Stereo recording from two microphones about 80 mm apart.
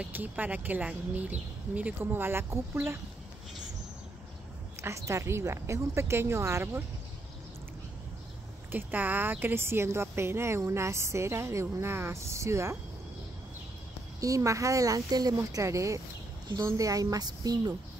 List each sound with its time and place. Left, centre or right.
0.0 s a woman's voice: right
4.8 s a woman's voice: right
8.7 s a woman's voice: right
14.2 s speech: right